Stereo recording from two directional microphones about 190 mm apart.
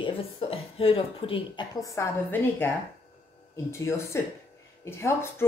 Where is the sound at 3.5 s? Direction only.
15° left (ahead or behind).